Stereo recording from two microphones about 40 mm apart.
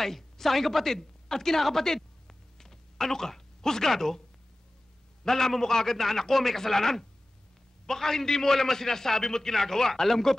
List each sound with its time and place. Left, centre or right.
0.0 s a woman's voice: centre
5.2 s a man's voice: centre